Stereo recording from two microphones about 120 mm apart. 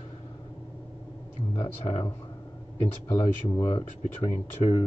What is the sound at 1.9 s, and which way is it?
Speech, 45° left (ahead or behind).